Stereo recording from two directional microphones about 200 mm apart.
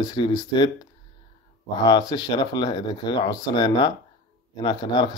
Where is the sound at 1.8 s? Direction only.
20° left (ahead or behind).